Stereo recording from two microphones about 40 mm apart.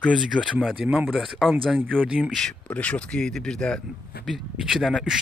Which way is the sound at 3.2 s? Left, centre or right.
Centre.